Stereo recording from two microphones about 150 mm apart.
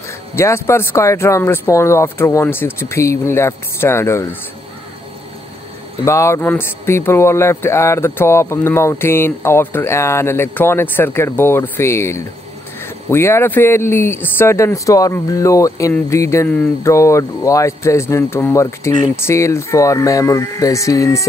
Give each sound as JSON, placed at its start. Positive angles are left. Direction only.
{"t": 0.4, "sound": "speech", "side_deg": 15}
{"t": 6.0, "sound": "speech", "side_deg": 20}